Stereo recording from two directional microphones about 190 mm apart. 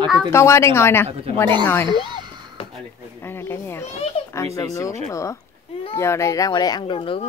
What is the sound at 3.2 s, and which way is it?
A woman's voice, 10° left (ahead or behind).